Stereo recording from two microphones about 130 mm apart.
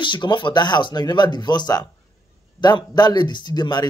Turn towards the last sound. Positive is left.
turn(degrees=35)  # may be behind; listen again after turning